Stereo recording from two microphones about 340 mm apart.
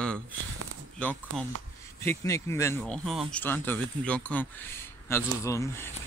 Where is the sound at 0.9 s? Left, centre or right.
Centre.